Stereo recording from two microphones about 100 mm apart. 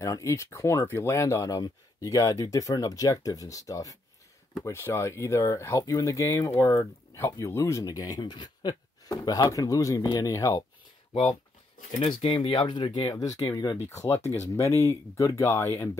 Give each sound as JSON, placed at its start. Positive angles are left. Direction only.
{"t": 0.0, "sound": "speech", "side_deg": 30}
{"t": 12.0, "sound": "speech", "side_deg": 60}
{"t": 13.8, "sound": "speech", "side_deg": 25}